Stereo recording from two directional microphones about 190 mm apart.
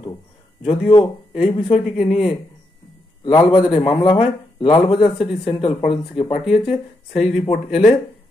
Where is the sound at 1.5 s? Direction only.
30° left (ahead or behind).